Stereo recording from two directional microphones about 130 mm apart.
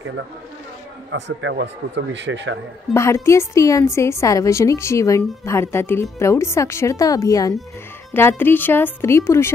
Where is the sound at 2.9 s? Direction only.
20° left (ahead or behind).